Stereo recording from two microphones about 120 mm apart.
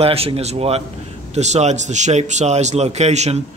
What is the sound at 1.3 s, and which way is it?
Speech, 70° right (ahead or behind).